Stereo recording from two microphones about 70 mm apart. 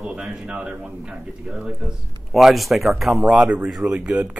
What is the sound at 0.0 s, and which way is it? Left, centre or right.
Speech, centre.